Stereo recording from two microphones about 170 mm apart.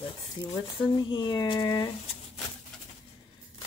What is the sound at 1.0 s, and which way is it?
Speech, 30° left (ahead or behind).